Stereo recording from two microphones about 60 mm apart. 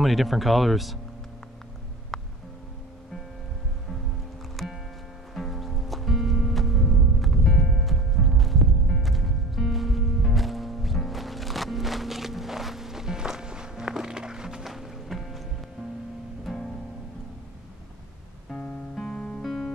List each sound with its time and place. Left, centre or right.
0.0 s speech: centre
2.1 s music: centre
5.3 s music: centre
16.4 s music: centre
18.5 s music: centre
19.4 s music: centre